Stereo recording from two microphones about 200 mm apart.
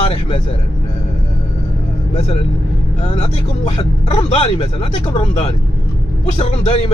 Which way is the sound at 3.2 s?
30° left (ahead or behind).